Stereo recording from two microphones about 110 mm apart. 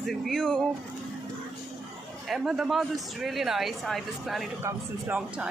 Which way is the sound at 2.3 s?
5° right (ahead or behind).